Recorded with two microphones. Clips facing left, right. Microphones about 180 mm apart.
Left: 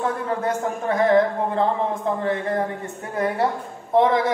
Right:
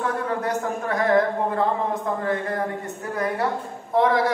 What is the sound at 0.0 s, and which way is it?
Speech, 25° left (ahead or behind).